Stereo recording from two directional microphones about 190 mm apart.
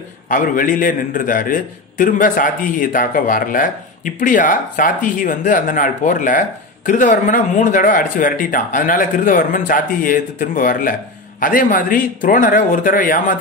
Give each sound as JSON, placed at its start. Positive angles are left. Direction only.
{"t": 0.3, "sound": "speech", "side_deg": 45}